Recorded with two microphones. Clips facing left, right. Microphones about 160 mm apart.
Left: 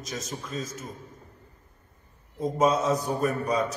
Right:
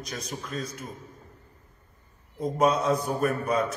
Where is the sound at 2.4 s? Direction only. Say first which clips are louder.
Even; centre (ahead or behind).